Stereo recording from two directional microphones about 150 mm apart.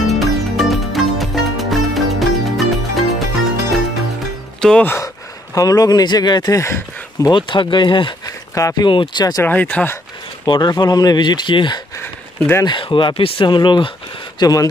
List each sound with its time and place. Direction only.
0.0 s music: centre (ahead or behind)
4.6 s speech: 5° left (ahead or behind)
4.9 s speech: 25° left (ahead or behind)
9.5 s speech: 10° left (ahead or behind)
10.4 s speech: 30° left (ahead or behind)
12.0 s a sound: 15° left (ahead or behind)
12.6 s speech: 35° left (ahead or behind)